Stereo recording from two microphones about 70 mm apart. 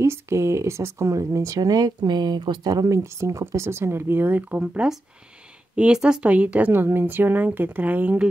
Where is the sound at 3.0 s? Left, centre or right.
Right; by 6.2 s centre.